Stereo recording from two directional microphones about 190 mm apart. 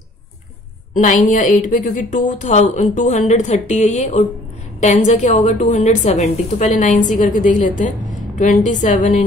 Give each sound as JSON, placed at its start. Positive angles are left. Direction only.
{"t": 0.9, "sound": "a woman's voice", "side_deg": 45}